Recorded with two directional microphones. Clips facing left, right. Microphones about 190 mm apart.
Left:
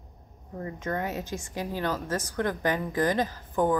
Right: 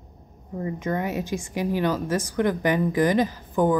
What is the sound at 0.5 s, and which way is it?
Speech, 10° right (ahead or behind).